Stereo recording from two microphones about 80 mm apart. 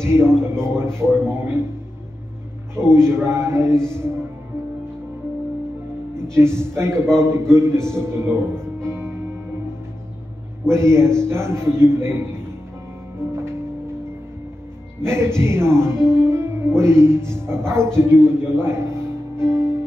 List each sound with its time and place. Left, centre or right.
0.0 s speech: right
2.7 s speech: right
6.3 s speech: right
8.8 s music: right
10.7 s speech: right
15.0 s speech: right
19.3 s music: right